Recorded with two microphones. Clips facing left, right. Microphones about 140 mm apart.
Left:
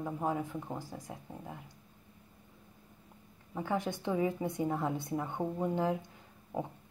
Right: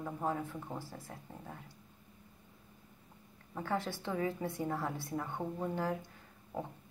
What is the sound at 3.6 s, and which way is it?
A woman's voice, 15° left (ahead or behind).